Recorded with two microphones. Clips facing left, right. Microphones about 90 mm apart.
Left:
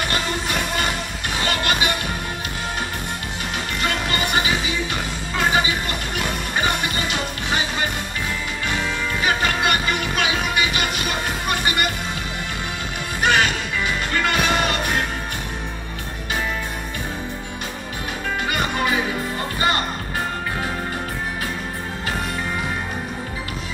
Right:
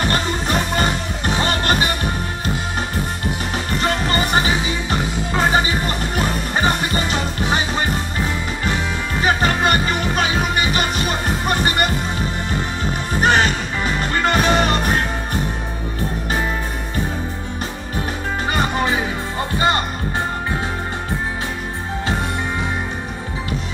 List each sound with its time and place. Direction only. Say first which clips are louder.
0.0 s music: right 3 dB; 35° right (ahead or behind)
3.8 s music: right 3 dB; 35° right (ahead or behind)
9.2 s music: right 4 dB; 35° right (ahead or behind)
13.2 s music: right 2 dB; 35° right (ahead or behind)
18.5 s music: right 3 dB; 30° right (ahead or behind)